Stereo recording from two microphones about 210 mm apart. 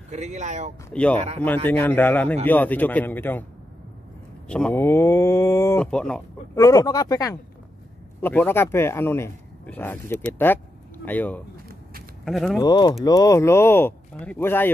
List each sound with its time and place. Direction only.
0.1 s speech: 35° right (ahead or behind)
0.8 s speech: 5° left (ahead or behind)
4.5 s speech: 5° left (ahead or behind)
6.5 s speech: 15° left (ahead or behind); by 12.5 s centre (ahead or behind)
12.5 s speech: 20° left (ahead or behind)